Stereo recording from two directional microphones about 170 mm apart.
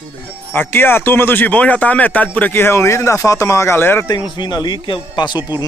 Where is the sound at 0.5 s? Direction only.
10° left (ahead or behind).